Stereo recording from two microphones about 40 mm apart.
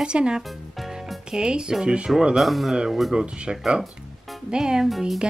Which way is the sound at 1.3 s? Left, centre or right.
Right.